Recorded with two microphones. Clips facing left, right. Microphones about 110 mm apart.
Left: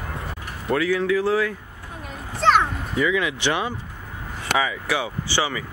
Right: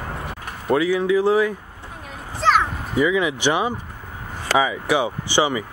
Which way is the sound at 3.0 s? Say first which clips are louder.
Right 3 dB; 20° right (ahead or behind).